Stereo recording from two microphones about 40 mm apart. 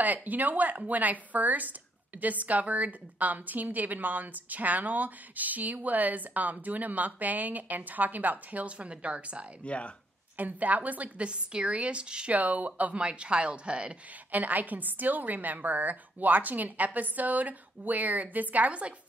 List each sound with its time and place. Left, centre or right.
0.0 s a woman's voice: right
9.7 s speech: left
10.3 s a woman's voice: right
11.2 s a woman's voice: right
12.3 s speech: right
14.3 s a woman's voice: right